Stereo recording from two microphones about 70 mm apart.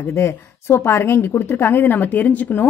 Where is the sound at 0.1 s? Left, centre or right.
Left.